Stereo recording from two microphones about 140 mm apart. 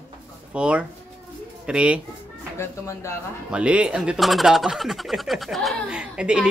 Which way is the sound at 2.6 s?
20° left (ahead or behind).